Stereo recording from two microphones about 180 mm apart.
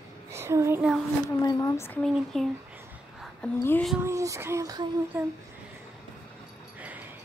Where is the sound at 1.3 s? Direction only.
20° left (ahead or behind).